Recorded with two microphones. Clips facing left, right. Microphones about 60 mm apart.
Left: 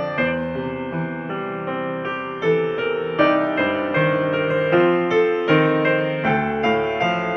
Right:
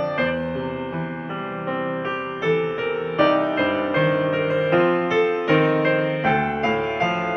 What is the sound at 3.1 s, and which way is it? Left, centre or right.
Music, left.